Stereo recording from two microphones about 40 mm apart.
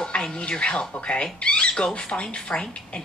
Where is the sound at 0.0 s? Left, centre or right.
Left.